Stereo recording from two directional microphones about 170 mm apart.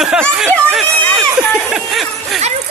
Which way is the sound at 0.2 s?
5° left (ahead or behind).